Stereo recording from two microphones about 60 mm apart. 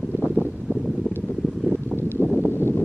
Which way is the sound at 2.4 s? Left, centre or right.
Left.